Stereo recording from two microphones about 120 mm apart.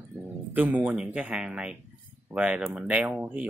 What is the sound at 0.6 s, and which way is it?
Speech, 15° right (ahead or behind).